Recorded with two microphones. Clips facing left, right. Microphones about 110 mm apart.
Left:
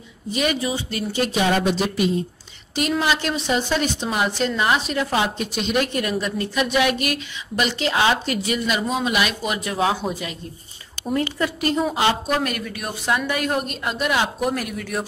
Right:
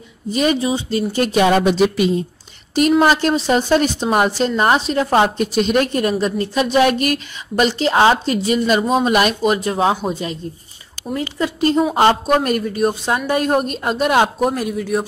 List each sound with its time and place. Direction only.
0.3 s speech: 35° right (ahead or behind)
1.1 s speech: 55° right (ahead or behind); by 2.0 s 75° right (ahead or behind)
3.0 s a woman's voice: 40° right (ahead or behind)
5.1 s speech: 45° right (ahead or behind); by 10.3 s 30° right (ahead or behind)
11.3 s speech: 25° right (ahead or behind)
11.9 s a woman's voice: 45° right (ahead or behind)
12.4 s speech: 35° right (ahead or behind)
14.8 s speech: 15° right (ahead or behind)